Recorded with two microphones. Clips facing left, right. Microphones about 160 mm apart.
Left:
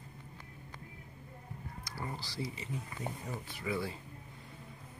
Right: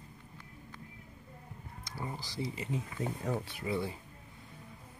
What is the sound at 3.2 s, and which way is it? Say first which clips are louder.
Speech: right 7 dB; 70° right (ahead or behind).